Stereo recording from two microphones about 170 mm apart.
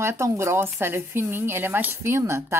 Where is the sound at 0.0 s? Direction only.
15° right (ahead or behind).